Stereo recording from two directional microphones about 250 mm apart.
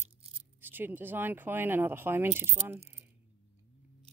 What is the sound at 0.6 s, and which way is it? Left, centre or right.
Speech, centre.